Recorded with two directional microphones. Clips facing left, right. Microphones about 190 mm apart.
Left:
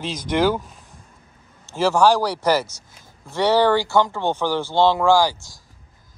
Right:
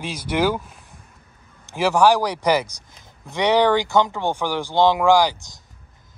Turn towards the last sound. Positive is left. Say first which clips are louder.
# even
turn(degrees=-20)  # may be behind; listen again after turning